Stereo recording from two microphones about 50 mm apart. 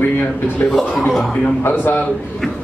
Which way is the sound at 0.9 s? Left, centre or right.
Centre.